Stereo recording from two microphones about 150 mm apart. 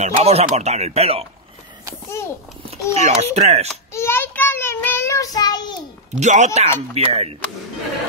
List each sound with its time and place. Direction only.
0.0 s speech: 45° right (ahead or behind)
2.0 s a child's voice: 20° left (ahead or behind)
3.0 s speech: 50° right (ahead or behind)
3.9 s child singing: 15° left (ahead or behind)
6.1 s speech: 50° right (ahead or behind)